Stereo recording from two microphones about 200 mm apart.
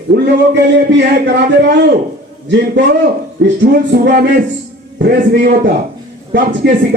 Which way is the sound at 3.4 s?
60° right (ahead or behind).